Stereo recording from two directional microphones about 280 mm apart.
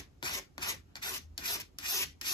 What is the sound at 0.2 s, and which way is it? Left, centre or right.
Rub, centre.